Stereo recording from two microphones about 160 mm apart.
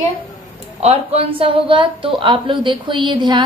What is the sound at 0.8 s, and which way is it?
A woman's voice, 40° right (ahead or behind).